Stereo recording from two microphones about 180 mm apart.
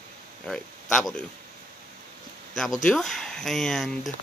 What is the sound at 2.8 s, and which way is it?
Speech, centre (ahead or behind).